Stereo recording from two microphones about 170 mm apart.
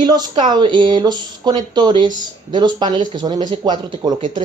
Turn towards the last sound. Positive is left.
turn(degrees=-25)  # may be behind; listen again after turning